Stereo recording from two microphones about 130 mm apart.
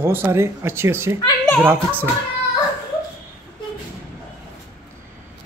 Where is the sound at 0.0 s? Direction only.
20° right (ahead or behind).